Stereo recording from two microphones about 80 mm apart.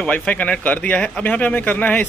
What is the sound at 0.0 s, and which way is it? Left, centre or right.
A man's voice, centre.